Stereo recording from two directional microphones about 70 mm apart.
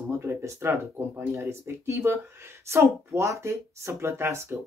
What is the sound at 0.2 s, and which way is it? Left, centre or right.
Speech, right.